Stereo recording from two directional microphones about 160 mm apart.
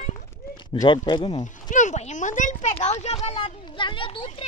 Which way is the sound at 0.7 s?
25° left (ahead or behind).